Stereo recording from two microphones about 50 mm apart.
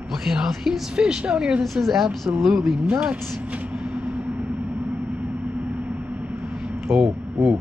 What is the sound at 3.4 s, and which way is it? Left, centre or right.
Vehicle, right.